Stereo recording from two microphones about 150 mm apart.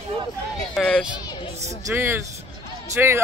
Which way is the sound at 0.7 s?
Centre (ahead or behind).